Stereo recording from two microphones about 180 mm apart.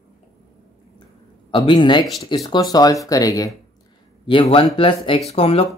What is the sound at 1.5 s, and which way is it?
Speech, 25° left (ahead or behind).